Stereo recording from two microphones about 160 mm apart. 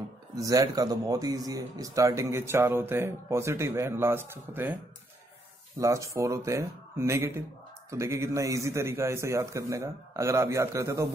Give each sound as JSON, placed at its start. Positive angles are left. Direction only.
{"t": 0.4, "sound": "speech", "side_deg": -20}
{"t": 5.8, "sound": "speech", "side_deg": -20}